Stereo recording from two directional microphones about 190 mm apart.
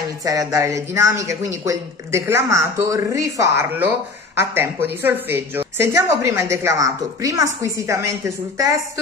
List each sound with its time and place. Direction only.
0.2 s a woman's voice: 20° right (ahead or behind)